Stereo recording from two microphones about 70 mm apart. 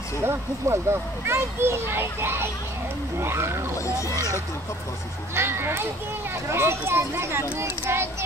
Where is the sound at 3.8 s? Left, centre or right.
Left.